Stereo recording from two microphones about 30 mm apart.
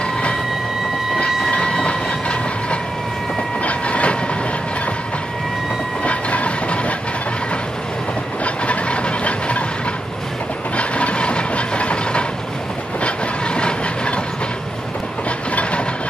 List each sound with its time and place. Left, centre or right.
1.5 s train: left
6.0 s train: left
8.6 s a sound: left
10.8 s train: left
13.6 s train: left